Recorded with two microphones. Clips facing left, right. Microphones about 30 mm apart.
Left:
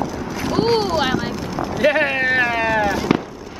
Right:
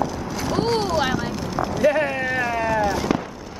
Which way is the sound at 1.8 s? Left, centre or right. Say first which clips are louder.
Left 3 dB; left.